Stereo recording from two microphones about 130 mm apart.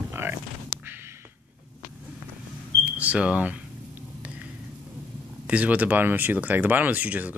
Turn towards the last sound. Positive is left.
turn(degrees=-10)  # may be behind; listen again after turning